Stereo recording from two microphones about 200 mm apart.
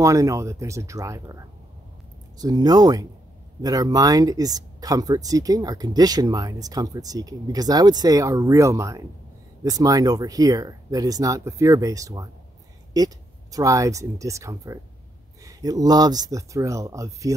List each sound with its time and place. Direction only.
0.0 s speech: 15° right (ahead or behind)